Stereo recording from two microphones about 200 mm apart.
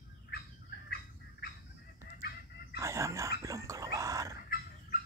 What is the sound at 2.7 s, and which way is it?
Dog, 15° right (ahead or behind).